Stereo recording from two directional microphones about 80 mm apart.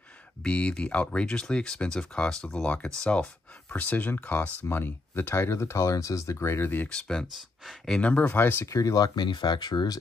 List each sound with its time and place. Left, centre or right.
0.4 s speech: centre
6.9 s speech: centre; by 8.6 s left
8.6 s speech: left